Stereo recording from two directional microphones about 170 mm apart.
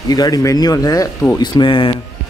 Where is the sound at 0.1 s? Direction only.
20° left (ahead or behind).